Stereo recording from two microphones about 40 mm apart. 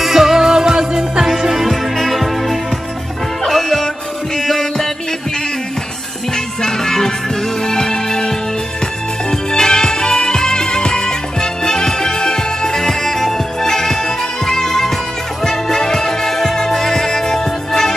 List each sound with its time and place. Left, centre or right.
0.0 s music: centre
6.3 s music: centre